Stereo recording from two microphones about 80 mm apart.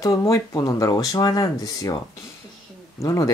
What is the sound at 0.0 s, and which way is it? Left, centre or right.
Speech, left.